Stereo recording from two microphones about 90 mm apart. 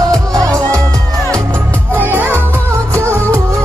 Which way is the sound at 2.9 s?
30° right (ahead or behind).